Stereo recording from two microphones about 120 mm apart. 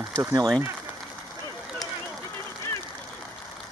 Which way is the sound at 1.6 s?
Centre (ahead or behind).